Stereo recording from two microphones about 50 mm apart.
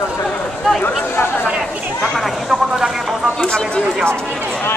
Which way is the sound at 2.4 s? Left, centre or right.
Centre.